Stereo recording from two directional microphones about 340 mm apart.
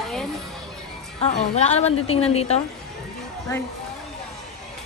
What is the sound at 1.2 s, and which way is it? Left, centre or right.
A woman's voice, centre.